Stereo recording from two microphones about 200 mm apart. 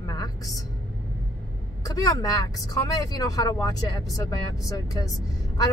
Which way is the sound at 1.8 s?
20° left (ahead or behind).